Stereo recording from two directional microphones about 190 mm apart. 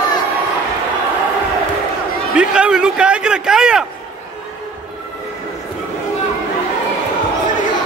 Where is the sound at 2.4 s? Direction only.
5° right (ahead or behind).